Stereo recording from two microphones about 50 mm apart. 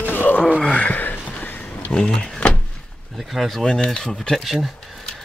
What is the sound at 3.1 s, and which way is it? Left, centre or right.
Speech, centre.